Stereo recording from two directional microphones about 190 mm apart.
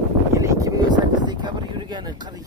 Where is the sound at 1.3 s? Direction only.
20° right (ahead or behind).